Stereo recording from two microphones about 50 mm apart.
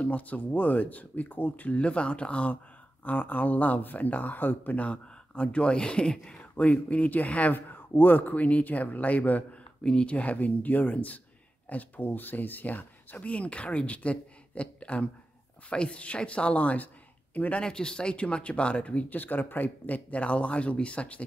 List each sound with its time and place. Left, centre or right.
0.0 s speech: left
4.8 s speech: left
9.8 s speech: left
17.6 s speech: centre